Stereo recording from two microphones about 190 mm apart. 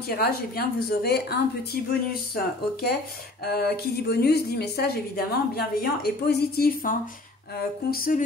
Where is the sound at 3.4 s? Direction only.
55° left (ahead or behind).